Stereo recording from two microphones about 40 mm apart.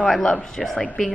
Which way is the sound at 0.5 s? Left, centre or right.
Centre.